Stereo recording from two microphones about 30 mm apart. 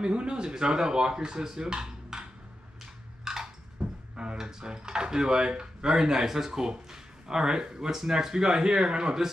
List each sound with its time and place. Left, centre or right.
0.0 s speech: right
1.6 s dishes: right
3.3 s a sound: centre
3.8 s a sound: right
4.2 s speech: right
6.1 s speech: centre